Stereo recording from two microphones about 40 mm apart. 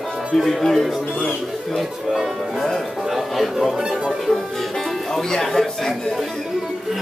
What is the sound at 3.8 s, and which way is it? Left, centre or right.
Speech, centre.